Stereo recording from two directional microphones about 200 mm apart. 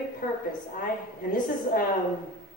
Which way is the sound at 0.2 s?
40° left (ahead or behind).